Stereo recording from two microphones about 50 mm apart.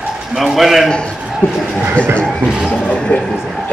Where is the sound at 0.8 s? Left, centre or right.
Centre.